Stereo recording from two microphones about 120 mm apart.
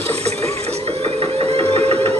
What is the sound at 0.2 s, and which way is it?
Printer, 60° right (ahead or behind).